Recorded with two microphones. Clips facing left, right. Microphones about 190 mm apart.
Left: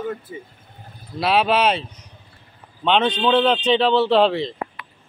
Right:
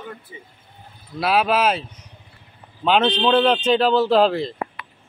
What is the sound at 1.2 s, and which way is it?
Speech, centre (ahead or behind).